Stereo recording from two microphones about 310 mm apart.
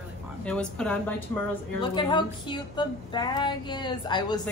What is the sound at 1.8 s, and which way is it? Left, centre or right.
A woman's voice, centre.